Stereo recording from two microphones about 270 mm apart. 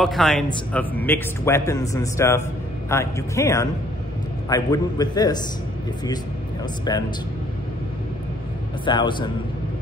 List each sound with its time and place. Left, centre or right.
0.0 s a man's voice: centre
6.9 s a man's voice: centre
8.8 s a man's voice: centre